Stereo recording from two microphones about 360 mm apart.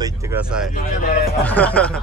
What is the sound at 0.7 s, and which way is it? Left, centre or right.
Speech, left.